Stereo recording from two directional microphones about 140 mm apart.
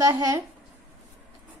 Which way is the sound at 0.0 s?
25° right (ahead or behind).